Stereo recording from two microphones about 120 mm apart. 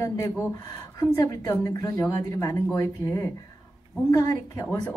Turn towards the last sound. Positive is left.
turn(degrees=20)  # may be behind; listen again after turning